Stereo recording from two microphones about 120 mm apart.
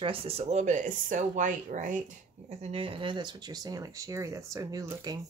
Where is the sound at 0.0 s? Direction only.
50° right (ahead or behind).